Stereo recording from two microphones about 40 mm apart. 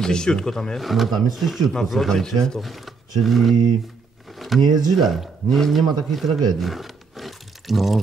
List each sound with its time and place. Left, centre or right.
0.0 s speech: centre
0.7 s speech: centre
2.6 s speech: centre